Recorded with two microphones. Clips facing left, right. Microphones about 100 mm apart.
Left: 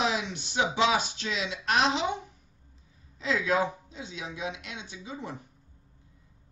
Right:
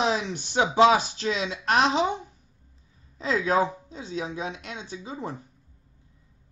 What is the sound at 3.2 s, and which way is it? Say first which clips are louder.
Speech: right 3 dB; 40° right (ahead or behind).